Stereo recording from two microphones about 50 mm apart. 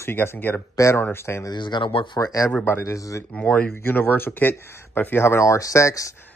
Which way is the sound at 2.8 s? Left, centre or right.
Left.